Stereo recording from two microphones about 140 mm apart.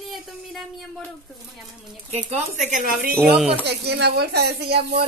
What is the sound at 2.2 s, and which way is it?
Speech, 55° right (ahead or behind).